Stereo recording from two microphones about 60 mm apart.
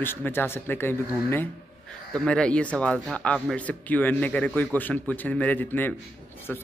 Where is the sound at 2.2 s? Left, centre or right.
Centre.